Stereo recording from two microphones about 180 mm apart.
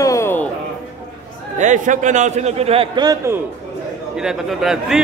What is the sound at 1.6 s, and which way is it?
A man's voice, 45° right (ahead or behind).